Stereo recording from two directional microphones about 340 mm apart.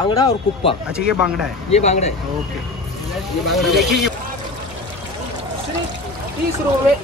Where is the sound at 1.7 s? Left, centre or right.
Centre.